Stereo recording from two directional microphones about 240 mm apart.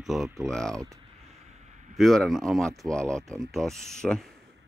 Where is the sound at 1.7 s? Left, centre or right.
Right.